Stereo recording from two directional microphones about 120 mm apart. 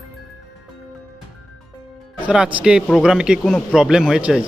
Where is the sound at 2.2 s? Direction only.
10° right (ahead or behind).